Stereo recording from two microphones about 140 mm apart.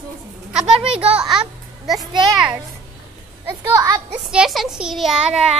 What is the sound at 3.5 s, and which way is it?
Speech, 25° right (ahead or behind).